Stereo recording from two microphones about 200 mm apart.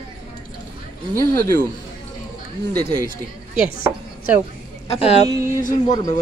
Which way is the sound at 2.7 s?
20° right (ahead or behind).